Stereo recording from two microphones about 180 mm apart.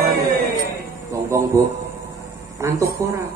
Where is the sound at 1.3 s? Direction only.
15° right (ahead or behind).